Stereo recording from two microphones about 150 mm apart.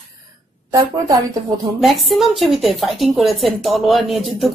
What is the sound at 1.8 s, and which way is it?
A woman's voice, centre (ahead or behind).